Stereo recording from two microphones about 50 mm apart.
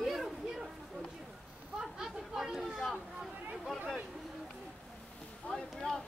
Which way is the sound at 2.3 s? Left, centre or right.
Centre.